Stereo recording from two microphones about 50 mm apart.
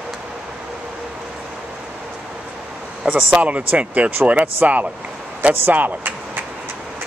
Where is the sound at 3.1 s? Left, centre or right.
Right.